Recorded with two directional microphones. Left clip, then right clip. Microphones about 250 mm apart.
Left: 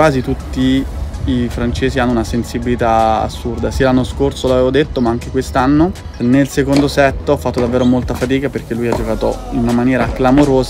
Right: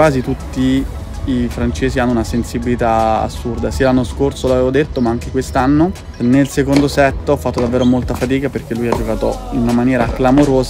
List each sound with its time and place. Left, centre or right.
0.0 s speech: centre